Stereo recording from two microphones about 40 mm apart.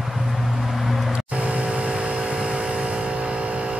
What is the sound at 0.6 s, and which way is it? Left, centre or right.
Vehicle, centre.